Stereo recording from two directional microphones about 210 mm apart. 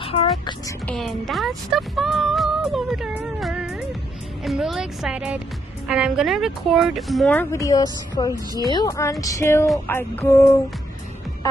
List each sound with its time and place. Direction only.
0.0 s music: 25° left (ahead or behind)
0.8 s speech: centre (ahead or behind); by 8.6 s 20° left (ahead or behind)
8.7 s music: 15° left (ahead or behind)